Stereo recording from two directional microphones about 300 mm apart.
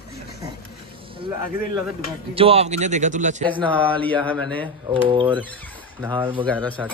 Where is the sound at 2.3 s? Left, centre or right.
Centre.